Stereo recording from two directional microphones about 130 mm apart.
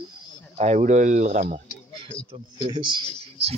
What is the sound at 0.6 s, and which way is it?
Speech, 65° right (ahead or behind).